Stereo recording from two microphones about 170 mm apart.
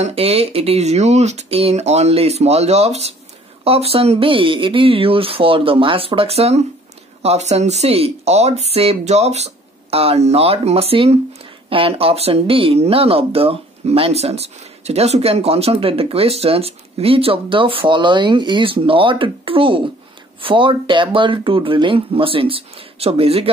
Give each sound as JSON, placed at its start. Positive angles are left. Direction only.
{"t": 0.0, "sound": "speech", "side_deg": -35}